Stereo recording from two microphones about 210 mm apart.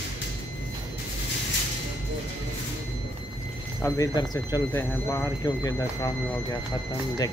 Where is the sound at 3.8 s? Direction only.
15° left (ahead or behind).